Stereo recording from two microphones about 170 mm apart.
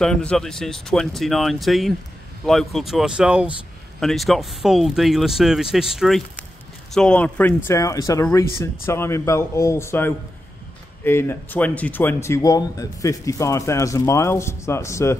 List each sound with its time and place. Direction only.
0.0 s speech: 5° left (ahead or behind)